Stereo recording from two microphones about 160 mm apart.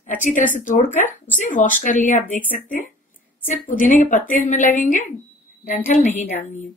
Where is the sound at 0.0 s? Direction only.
55° left (ahead or behind).